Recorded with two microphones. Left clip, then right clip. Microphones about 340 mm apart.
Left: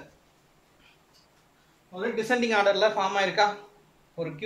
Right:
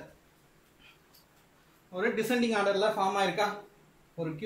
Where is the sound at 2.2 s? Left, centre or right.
Left.